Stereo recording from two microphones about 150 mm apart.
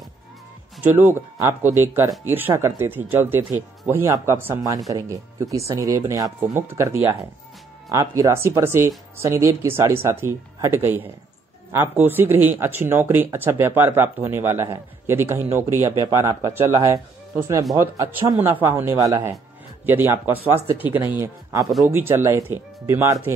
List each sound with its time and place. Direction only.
0.8 s speech: 15° right (ahead or behind)